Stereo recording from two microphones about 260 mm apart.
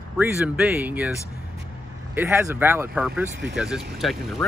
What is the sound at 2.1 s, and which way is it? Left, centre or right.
Speech, centre.